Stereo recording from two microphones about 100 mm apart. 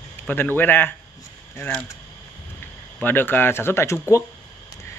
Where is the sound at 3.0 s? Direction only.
20° left (ahead or behind).